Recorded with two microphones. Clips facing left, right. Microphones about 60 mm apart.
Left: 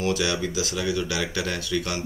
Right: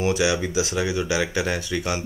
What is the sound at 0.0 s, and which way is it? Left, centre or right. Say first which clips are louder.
Speech: right 3 dB; centre.